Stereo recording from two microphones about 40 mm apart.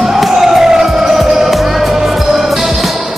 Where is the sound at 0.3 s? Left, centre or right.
Centre.